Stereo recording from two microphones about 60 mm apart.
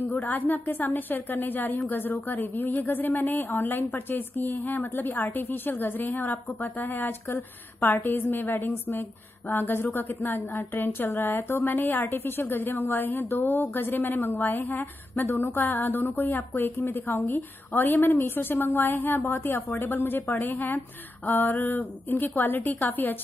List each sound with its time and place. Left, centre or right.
0.1 s a woman's voice: left